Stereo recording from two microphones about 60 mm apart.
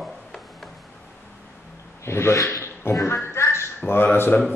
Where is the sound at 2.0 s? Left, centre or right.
Left.